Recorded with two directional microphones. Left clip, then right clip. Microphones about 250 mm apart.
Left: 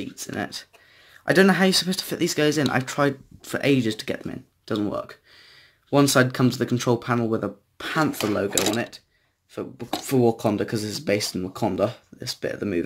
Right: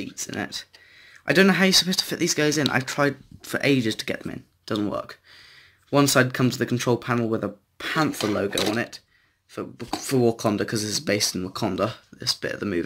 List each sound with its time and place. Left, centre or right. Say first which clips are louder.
0.0 s speech: even; centre